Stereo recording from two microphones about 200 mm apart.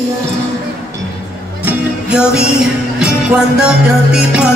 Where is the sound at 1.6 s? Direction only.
5° right (ahead or behind).